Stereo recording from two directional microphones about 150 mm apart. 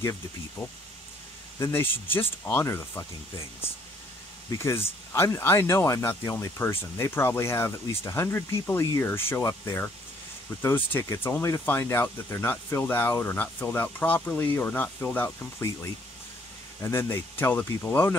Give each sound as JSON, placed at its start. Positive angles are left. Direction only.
{"t": 0.6, "sound": "speech", "side_deg": 5}
{"t": 4.6, "sound": "speech", "side_deg": 15}